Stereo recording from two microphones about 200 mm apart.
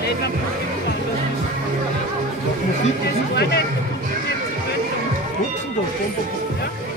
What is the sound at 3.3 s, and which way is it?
Music, 55° left (ahead or behind).